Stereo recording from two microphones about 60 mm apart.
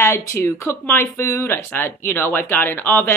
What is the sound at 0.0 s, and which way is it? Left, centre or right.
Speech, left.